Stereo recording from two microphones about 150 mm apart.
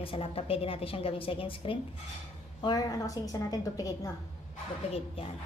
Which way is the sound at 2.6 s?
25° left (ahead or behind).